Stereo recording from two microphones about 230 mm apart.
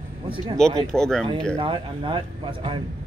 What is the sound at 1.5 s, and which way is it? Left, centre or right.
Speech, right.